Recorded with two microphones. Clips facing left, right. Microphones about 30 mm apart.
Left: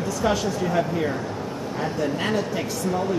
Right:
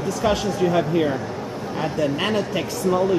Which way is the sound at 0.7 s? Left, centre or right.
Right.